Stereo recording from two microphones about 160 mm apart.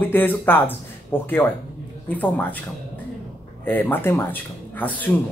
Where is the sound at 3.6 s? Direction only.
10° left (ahead or behind).